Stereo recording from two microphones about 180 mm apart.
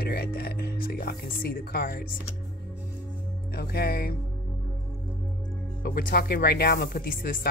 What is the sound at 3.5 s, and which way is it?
Speech, 60° left (ahead or behind).